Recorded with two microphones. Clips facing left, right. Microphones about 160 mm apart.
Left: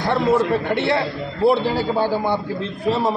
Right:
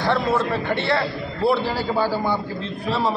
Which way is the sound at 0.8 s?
20° left (ahead or behind).